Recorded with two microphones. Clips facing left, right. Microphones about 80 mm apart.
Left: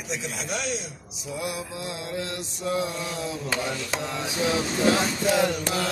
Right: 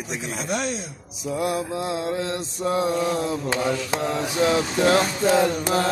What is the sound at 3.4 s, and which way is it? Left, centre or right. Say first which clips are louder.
Mantra: right 5 dB; right.